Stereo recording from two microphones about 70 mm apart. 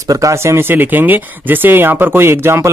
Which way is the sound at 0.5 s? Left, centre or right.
Right.